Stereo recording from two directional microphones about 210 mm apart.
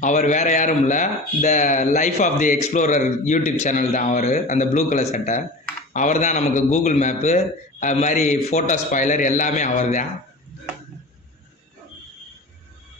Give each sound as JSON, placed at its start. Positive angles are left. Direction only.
{"t": 0.0, "sound": "a man's voice", "side_deg": 35}